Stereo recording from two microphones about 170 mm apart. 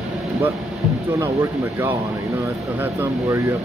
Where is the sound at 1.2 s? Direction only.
15° right (ahead or behind).